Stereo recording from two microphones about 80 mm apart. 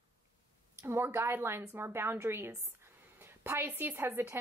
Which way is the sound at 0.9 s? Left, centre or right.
Right.